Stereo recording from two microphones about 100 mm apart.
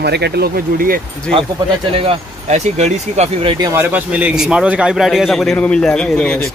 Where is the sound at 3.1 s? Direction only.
80° right.